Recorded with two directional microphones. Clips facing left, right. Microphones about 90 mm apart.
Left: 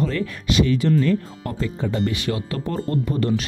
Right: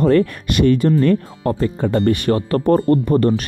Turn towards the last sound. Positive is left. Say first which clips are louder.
# right 8 dB
turn(degrees=-50)  # may be behind; listen again after turning